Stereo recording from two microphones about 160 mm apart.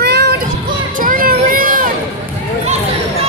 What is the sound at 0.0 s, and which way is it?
Music, 90° right.